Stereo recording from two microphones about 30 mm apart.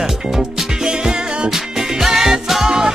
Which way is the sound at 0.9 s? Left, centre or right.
Centre.